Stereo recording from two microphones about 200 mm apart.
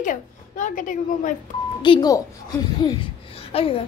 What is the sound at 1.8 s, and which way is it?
A woman's voice, 20° left (ahead or behind).